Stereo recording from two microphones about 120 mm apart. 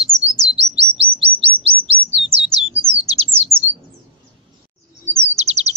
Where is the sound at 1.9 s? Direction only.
55° right (ahead or behind).